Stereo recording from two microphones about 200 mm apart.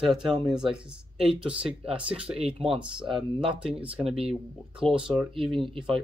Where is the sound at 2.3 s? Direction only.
30° right (ahead or behind).